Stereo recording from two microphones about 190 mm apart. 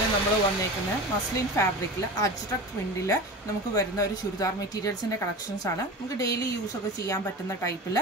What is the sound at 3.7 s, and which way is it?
A woman's voice, 20° left (ahead or behind).